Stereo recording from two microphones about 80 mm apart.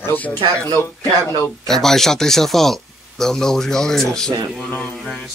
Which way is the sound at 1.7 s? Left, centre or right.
Centre.